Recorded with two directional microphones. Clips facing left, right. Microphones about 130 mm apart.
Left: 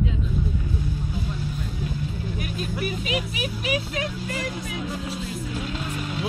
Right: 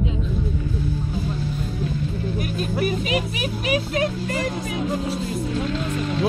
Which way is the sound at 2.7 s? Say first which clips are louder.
Right 5 dB; 45° right (ahead or behind).